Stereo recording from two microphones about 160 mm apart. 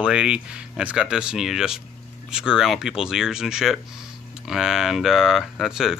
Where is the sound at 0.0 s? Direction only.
5° right (ahead or behind).